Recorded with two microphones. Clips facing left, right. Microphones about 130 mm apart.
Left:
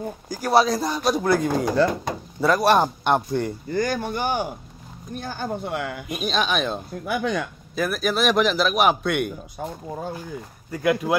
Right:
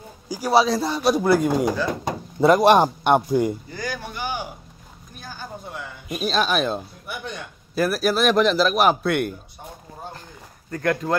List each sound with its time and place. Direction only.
0.3 s a man's voice: 5° right (ahead or behind)
2.4 s a man's voice: 20° right (ahead or behind)
3.7 s speech: 50° left (ahead or behind)
5.1 s speech: 60° left (ahead or behind)
6.0 s a man's voice: centre (ahead or behind)
7.2 s speech: 90° left
7.7 s a man's voice: 5° right (ahead or behind)
10.7 s speech: 10° left (ahead or behind)